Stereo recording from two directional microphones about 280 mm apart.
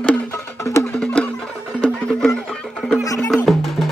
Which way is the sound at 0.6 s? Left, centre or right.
Centre.